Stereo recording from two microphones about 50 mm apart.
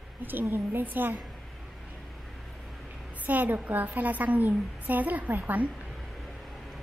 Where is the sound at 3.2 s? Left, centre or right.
Right.